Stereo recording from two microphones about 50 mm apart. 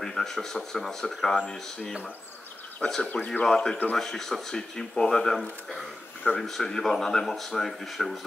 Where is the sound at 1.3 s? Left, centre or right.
Left.